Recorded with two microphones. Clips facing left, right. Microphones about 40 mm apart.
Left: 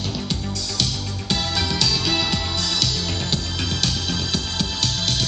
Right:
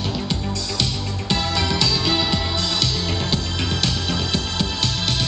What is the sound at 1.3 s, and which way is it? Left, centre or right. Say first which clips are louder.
Music: right 2 dB; centre.